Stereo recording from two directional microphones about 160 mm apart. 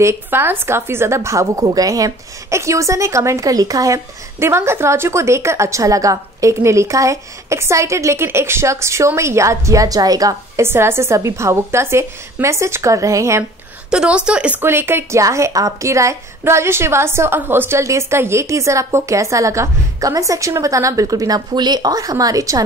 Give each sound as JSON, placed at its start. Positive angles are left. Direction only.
{"t": 0.0, "sound": "a woman's voice", "side_deg": -15}
{"t": 13.8, "sound": "a woman's voice", "side_deg": -5}